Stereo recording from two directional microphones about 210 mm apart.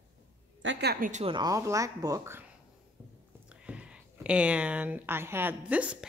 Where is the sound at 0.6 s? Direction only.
50° right (ahead or behind).